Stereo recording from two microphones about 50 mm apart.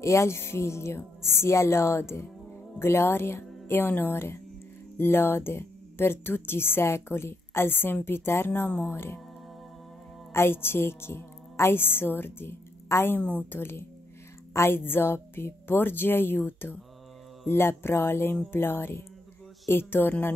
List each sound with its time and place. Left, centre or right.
0.0 s speech: left
4.1 s speech: left
10.3 s a woman's voice: left
13.2 s a woman's voice: left
13.5 s speech: left